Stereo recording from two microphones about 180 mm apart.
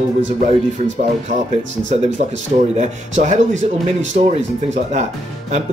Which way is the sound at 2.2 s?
40° right (ahead or behind).